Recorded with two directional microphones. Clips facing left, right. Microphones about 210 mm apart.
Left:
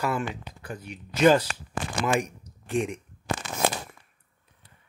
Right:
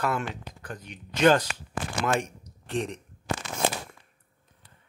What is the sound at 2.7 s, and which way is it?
Speech, 10° left (ahead or behind).